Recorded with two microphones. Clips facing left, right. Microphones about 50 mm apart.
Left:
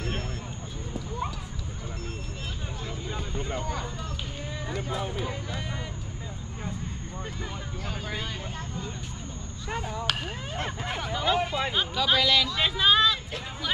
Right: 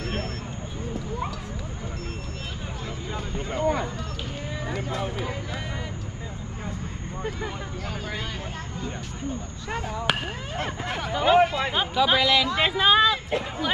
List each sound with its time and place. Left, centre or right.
3.3 s a sound: right
10.1 s speech: centre
12.4 s speech: right